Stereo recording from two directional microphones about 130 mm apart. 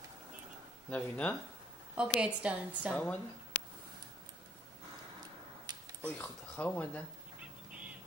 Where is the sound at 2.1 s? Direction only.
10° right (ahead or behind).